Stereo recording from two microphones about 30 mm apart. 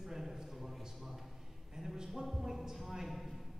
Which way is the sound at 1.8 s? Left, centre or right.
Right.